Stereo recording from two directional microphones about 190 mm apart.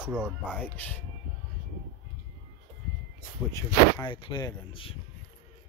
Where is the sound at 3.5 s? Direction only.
15° left (ahead or behind).